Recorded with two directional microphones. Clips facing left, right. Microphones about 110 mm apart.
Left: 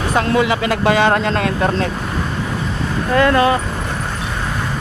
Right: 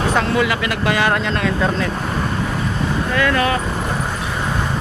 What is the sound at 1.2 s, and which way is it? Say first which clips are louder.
Speech: left 2 dB; 70° left (ahead or behind).